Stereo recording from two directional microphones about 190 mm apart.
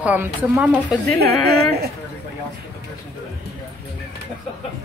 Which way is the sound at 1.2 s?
55° right (ahead or behind).